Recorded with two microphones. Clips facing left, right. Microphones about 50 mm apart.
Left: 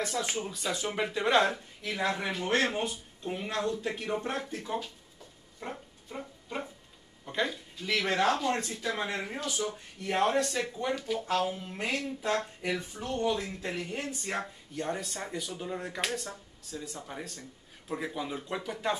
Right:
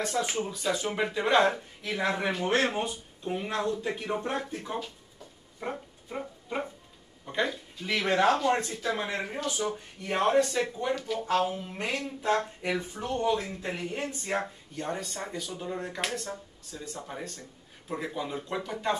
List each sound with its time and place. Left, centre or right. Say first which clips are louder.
0.1 s speech: right 3 dB; centre
5.6 s dog: right 5 dB; centre
7.2 s speech: right 2 dB; centre
11.1 s speech: right 3 dB; centre